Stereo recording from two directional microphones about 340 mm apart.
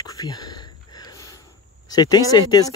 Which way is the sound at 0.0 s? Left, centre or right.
Centre.